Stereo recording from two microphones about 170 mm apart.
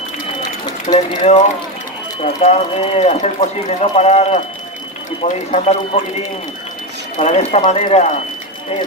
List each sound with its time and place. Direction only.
0.4 s run: 25° left (ahead or behind)
0.9 s speech: 40° left (ahead or behind)
2.4 s speech: 35° left (ahead or behind)
7.2 s speech: 40° left (ahead or behind)